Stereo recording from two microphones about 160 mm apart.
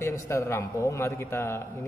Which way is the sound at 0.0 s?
20° left (ahead or behind).